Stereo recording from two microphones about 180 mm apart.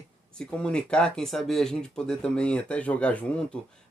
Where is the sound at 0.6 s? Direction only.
5° left (ahead or behind).